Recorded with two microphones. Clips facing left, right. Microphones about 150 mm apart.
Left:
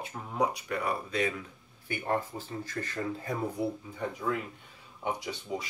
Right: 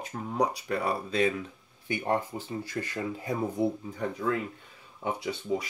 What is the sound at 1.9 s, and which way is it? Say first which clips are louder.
Speech: right 3 dB; 20° right (ahead or behind).